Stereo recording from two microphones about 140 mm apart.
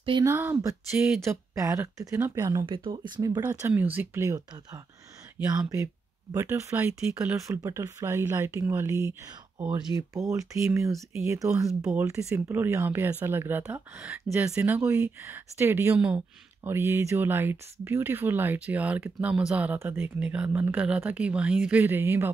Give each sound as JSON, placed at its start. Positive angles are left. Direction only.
{"t": 0.2, "sound": "speech", "side_deg": -20}
{"t": 2.6, "sound": "speech", "side_deg": -40}
{"t": 3.2, "sound": "speech", "side_deg": -25}
{"t": 6.3, "sound": "speech", "side_deg": -20}
{"t": 7.3, "sound": "speech", "side_deg": -20}